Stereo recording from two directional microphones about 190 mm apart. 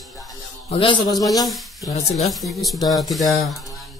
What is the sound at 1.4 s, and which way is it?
Speech, centre (ahead or behind).